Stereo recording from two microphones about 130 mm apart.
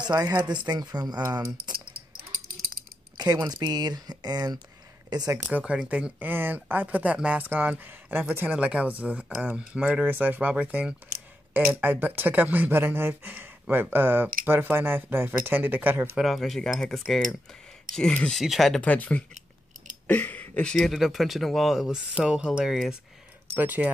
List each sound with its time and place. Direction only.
0.0 s speech: 30° right (ahead or behind)
3.2 s speech: 30° right (ahead or behind)
5.5 s speech: 10° right (ahead or behind)
18.9 s speech: 10° left (ahead or behind); by 23.9 s 15° right (ahead or behind)